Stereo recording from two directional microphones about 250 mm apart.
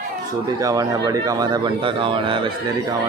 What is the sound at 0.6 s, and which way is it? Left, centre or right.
Speech, centre.